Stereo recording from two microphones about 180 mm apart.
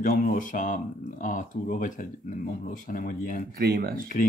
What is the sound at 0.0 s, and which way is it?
Speech, 50° left (ahead or behind).